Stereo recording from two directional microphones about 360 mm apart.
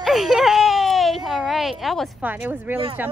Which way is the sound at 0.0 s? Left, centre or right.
Centre.